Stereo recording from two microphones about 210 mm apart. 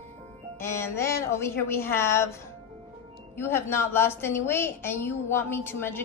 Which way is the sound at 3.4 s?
10° left (ahead or behind).